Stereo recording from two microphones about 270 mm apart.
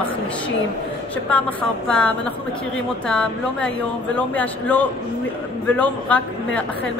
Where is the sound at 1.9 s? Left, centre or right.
Centre.